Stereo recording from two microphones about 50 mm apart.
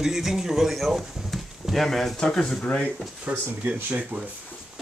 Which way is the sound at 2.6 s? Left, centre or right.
Left.